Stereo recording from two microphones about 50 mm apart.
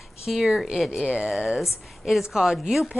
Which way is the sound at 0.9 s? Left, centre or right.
Centre.